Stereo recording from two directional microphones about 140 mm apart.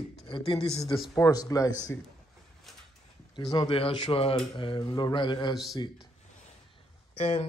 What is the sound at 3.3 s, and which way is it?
Speech, 30° left (ahead or behind).